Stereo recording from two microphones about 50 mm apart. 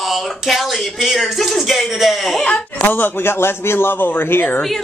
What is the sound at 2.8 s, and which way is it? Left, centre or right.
A man's voice, left.